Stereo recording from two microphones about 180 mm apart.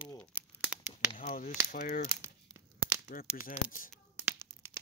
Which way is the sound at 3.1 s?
50° left (ahead or behind).